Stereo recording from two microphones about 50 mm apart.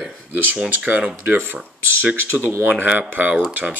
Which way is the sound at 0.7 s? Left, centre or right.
Right.